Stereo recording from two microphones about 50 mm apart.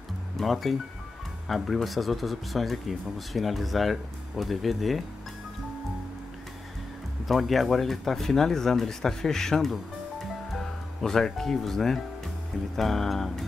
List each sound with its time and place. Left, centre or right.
0.4 s speech: centre
7.2 s speech: centre